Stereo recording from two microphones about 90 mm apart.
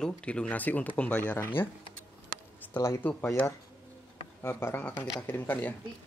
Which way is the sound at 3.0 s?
20° left (ahead or behind).